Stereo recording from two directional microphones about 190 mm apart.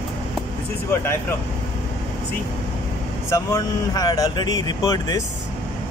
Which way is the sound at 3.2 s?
15° left (ahead or behind).